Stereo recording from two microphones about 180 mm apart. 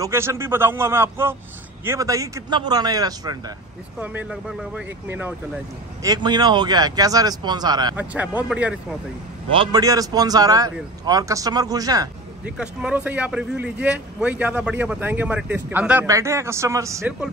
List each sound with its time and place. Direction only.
0.0 s a man's voice: 15° right (ahead or behind)
4.0 s speech: 10° right (ahead or behind)
6.0 s a man's voice: 25° right (ahead or behind)
7.9 s speech: 10° right (ahead or behind)
9.5 s a man's voice: 25° right (ahead or behind)
12.4 s speech: 5° right (ahead or behind)